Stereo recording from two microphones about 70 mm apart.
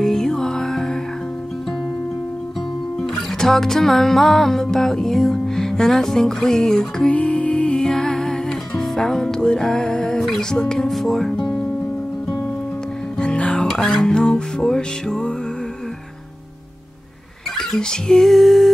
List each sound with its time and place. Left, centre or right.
0.0 s music: centre
3.0 s music: centre
7.1 s music: centre
13.2 s music: centre
17.6 s music: centre